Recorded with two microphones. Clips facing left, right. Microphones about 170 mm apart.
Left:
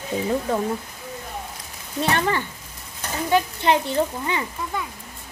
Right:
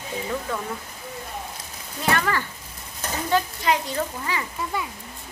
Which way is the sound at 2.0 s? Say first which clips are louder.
Left 2 dB; 30° left (ahead or behind).